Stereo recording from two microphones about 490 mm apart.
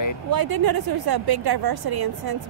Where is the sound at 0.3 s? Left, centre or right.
Right.